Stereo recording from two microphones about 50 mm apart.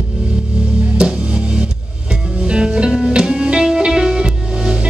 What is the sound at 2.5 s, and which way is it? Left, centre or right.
Music, centre.